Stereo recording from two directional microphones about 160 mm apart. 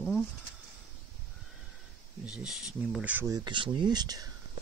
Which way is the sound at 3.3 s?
25° right (ahead or behind).